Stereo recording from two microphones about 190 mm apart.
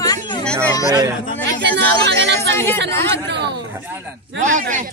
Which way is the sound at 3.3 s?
65° right (ahead or behind).